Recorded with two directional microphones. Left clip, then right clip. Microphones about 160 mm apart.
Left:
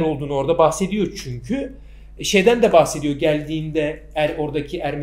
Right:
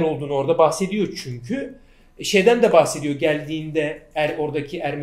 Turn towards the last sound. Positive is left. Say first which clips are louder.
# left 1 dB
turn(degrees=-20)  # may be behind; listen again after turning